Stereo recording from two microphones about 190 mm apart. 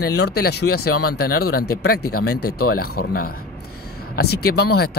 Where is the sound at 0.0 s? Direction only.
60° left (ahead or behind).